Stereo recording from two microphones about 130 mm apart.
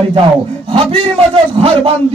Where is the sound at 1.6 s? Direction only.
45° right (ahead or behind).